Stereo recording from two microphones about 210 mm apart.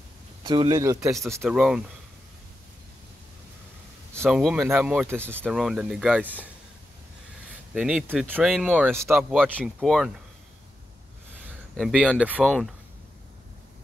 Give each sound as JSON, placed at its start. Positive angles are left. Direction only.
{"t": 0.4, "sound": "speech", "side_deg": -20}
{"t": 1.4, "sound": "speech", "side_deg": -5}
{"t": 4.2, "sound": "speech", "side_deg": 0}
{"t": 9.3, "sound": "speech", "side_deg": 5}
{"t": 11.7, "sound": "speech", "side_deg": 0}